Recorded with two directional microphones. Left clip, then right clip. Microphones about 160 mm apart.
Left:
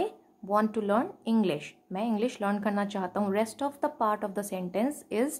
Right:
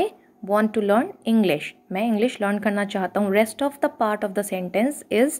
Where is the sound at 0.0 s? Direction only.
20° right (ahead or behind).